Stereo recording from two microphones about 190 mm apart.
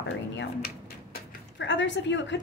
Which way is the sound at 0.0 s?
60° left (ahead or behind).